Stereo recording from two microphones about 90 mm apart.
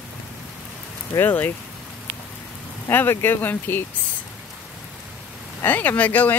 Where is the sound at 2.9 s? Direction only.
25° left (ahead or behind).